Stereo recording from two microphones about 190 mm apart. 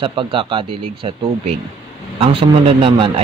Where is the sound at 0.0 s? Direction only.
25° right (ahead or behind).